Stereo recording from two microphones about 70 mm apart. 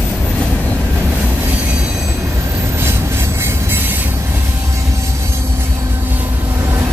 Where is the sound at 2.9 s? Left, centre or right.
Right.